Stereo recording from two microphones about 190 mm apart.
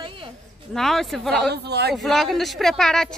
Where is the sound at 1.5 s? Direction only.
60° right (ahead or behind).